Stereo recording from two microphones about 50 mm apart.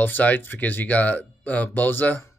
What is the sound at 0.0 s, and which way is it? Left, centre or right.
Speech, left.